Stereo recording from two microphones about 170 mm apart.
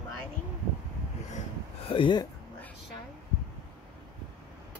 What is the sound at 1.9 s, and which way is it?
Speech, 30° left (ahead or behind).